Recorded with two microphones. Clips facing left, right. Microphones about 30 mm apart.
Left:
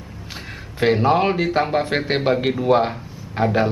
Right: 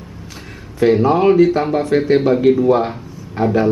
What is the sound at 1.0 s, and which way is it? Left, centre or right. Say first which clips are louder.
Speech: right 6 dB; left.